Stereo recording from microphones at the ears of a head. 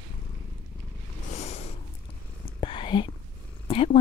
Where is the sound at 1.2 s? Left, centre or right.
Left.